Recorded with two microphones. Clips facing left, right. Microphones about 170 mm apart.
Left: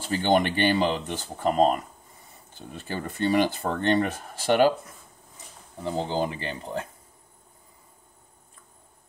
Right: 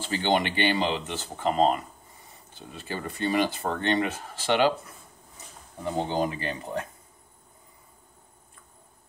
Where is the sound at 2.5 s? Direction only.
50° left (ahead or behind).